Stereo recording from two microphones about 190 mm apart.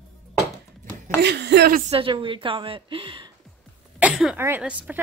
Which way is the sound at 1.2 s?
60° right (ahead or behind).